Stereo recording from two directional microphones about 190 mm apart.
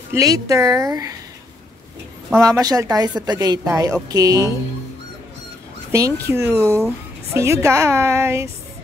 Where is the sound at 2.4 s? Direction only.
20° right (ahead or behind).